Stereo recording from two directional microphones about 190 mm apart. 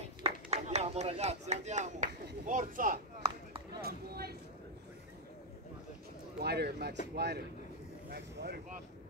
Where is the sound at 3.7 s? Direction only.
55° right (ahead or behind).